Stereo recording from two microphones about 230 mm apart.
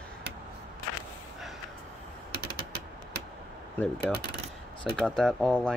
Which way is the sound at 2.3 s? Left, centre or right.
Right.